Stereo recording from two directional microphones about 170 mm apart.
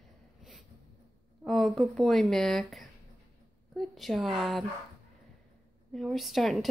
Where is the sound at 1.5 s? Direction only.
Centre (ahead or behind).